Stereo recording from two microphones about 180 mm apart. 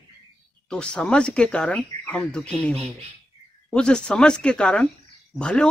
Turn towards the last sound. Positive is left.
turn(degrees=5)  # may be behind; listen again after turning